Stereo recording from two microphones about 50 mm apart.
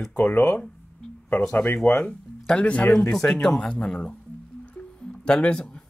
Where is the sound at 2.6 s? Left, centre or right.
Left.